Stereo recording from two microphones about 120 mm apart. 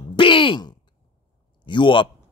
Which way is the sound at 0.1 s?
45° left (ahead or behind).